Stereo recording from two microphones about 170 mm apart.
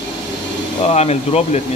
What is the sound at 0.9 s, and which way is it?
Speech, 40° left (ahead or behind).